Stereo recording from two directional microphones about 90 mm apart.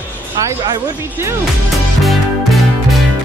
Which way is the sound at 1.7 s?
Centre (ahead or behind).